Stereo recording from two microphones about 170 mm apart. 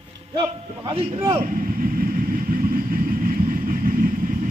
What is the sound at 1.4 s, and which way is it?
Vehicle, 55° right (ahead or behind).